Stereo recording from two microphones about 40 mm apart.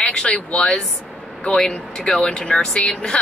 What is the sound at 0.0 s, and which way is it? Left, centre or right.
Speech, left.